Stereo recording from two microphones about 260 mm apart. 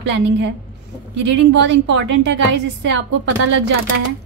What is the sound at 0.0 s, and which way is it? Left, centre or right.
A woman's voice, right.